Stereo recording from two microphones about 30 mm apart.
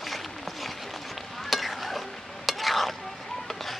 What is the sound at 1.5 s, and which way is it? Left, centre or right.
Stir, centre.